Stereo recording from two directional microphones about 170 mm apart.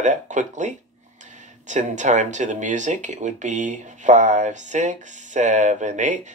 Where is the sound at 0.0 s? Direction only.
45° right (ahead or behind).